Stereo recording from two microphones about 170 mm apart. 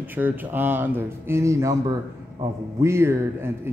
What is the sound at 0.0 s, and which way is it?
A man's voice, 10° right (ahead or behind).